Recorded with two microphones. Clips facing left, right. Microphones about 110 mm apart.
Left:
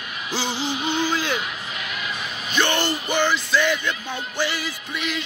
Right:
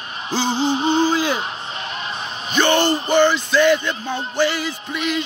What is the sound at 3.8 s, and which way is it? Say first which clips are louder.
Speech: right 4 dB; 30° right (ahead or behind).